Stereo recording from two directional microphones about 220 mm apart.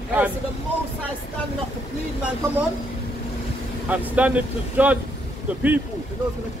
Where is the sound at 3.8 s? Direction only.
5° right (ahead or behind).